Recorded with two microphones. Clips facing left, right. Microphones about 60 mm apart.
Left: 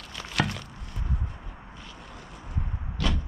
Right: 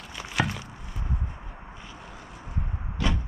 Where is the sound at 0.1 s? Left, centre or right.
Centre.